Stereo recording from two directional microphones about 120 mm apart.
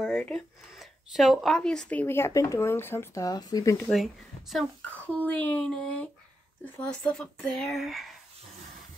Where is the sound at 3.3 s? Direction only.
30° left (ahead or behind).